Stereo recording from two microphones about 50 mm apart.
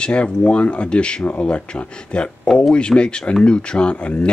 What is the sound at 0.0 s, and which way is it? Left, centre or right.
Speech, left.